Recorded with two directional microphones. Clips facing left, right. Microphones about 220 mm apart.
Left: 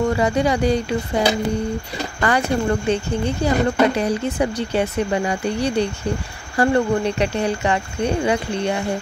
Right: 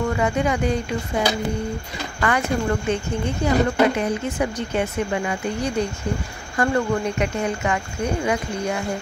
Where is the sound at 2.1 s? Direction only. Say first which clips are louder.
Left 2 dB; 35° left (ahead or behind).